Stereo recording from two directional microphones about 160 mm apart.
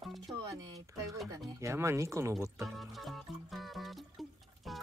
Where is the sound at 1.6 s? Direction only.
15° right (ahead or behind).